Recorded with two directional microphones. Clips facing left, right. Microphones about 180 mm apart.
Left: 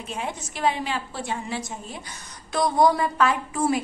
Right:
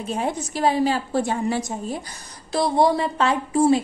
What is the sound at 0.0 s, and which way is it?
Speech, 35° right (ahead or behind).